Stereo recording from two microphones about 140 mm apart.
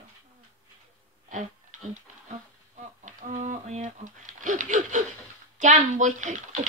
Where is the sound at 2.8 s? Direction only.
60° right (ahead or behind).